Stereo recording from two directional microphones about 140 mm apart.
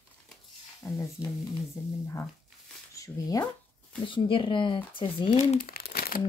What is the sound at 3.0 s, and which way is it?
Speech, 25° left (ahead or behind).